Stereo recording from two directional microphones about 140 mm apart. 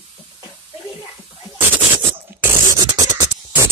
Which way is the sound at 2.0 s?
20° right (ahead or behind).